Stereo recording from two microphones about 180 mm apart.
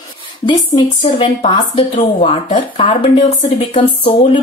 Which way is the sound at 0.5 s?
25° left (ahead or behind).